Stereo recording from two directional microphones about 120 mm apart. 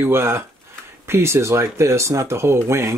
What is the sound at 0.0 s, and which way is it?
Speech, 20° right (ahead or behind).